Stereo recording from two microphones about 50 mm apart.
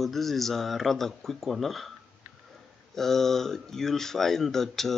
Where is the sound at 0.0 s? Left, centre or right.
Centre.